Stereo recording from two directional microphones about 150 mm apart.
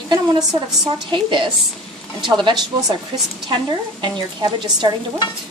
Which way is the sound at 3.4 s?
30° right (ahead or behind).